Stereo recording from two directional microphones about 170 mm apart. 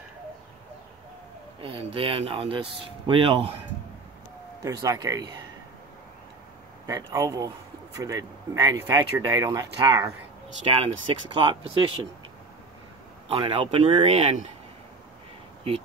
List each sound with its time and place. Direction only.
1.6 s speech: 35° right (ahead or behind)
4.6 s a man's voice: 20° right (ahead or behind)
6.9 s a man's voice: 20° right (ahead or behind)
10.7 s speech: 35° right (ahead or behind)
13.3 s speech: 30° right (ahead or behind)